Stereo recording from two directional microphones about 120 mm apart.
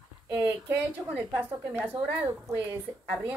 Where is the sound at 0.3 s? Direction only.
20° right (ahead or behind).